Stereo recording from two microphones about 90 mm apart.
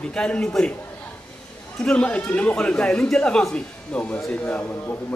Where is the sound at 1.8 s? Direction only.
10° left (ahead or behind).